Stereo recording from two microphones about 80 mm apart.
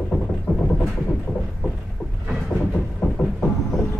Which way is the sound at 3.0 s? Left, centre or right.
Left.